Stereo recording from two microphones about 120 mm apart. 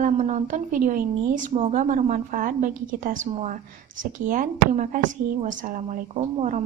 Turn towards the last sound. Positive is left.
turn(degrees=-90)